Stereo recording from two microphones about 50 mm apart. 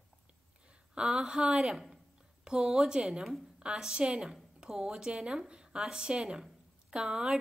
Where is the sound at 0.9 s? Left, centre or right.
Centre.